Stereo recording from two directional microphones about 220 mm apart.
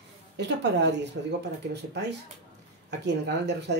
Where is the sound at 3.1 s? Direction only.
50° right (ahead or behind).